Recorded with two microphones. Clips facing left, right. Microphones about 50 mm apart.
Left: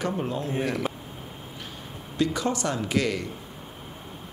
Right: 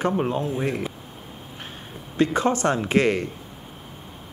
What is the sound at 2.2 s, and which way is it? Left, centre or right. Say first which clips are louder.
Speech: right 5 dB; right.